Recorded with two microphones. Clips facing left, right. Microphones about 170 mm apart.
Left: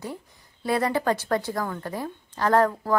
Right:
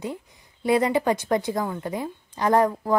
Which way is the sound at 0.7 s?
15° right (ahead or behind).